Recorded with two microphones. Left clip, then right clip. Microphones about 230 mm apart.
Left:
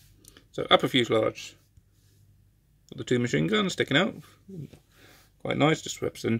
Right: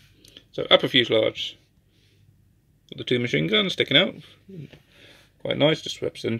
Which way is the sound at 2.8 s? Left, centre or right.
Centre.